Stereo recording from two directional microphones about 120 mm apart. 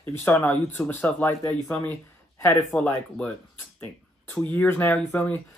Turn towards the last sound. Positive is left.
turn(degrees=15)  # may be behind; listen again after turning